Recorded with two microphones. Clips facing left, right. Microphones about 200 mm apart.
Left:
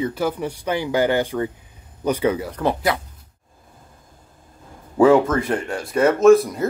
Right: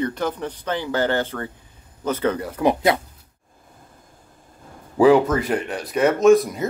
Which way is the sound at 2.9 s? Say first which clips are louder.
Right 2 dB; 30° right (ahead or behind).